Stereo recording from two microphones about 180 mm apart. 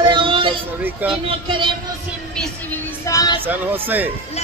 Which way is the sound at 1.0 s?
10° right (ahead or behind).